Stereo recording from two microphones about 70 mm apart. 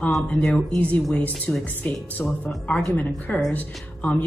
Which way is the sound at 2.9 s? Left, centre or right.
Left.